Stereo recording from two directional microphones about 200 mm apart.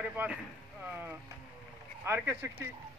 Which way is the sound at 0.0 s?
5° right (ahead or behind).